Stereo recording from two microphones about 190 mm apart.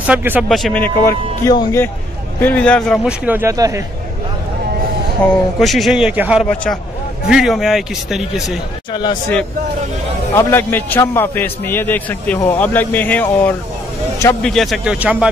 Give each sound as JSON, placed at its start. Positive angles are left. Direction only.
{"t": 0.0, "sound": "a man's voice", "side_deg": -10}
{"t": 3.1, "sound": "speech", "side_deg": -10}
{"t": 5.2, "sound": "a man's voice", "side_deg": 5}
{"t": 10.3, "sound": "a man's voice", "side_deg": 10}